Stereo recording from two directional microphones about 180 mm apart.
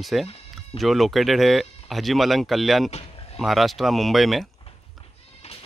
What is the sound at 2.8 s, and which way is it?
Speech, 35° left (ahead or behind).